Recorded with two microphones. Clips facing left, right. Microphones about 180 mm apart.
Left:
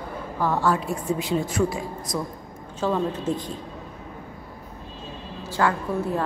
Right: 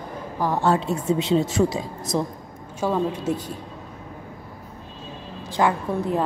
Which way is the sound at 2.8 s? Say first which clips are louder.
Right 1 dB; 10° right (ahead or behind).